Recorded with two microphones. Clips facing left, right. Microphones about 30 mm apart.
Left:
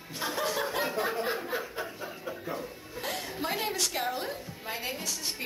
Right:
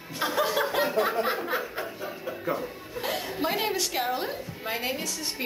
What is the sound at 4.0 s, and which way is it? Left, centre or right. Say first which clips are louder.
Speech: right 4 dB; centre.